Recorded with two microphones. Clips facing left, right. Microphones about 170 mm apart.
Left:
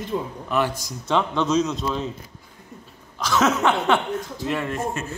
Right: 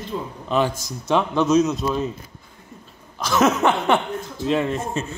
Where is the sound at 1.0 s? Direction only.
15° right (ahead or behind).